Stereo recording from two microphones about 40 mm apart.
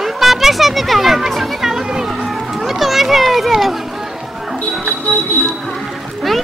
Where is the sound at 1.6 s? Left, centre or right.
Centre.